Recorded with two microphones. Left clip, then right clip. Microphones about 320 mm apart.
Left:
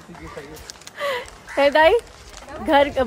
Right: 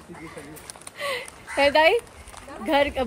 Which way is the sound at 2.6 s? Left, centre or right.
Centre.